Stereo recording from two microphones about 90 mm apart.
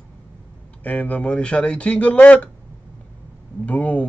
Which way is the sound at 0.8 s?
15° left (ahead or behind).